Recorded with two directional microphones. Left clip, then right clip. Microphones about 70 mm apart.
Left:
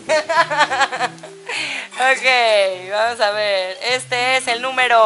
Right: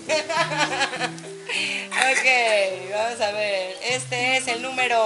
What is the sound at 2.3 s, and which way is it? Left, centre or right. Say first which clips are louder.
A woman's voice: left 5 dB; left.